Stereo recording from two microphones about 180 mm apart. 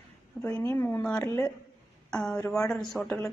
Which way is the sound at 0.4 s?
10° left (ahead or behind).